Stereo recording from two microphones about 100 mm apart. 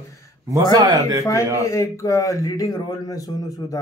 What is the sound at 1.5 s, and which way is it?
A man's voice, 30° left (ahead or behind).